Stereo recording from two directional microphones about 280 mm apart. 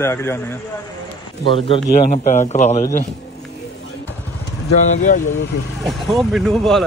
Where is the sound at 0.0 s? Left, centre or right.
Centre.